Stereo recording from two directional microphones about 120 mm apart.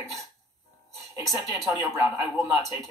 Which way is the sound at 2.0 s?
20° right (ahead or behind).